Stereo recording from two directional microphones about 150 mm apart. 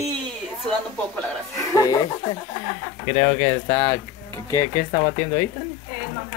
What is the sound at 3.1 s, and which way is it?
Speech, 30° left (ahead or behind).